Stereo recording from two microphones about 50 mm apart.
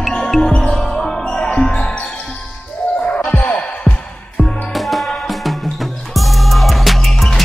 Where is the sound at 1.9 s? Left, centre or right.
Left.